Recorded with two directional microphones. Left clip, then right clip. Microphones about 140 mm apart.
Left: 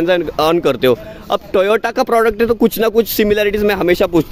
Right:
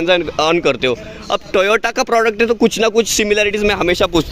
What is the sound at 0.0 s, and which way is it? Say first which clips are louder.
Speech: even; 35° left (ahead or behind).